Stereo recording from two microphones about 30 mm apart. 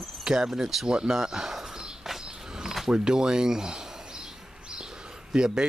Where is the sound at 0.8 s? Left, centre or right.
Right.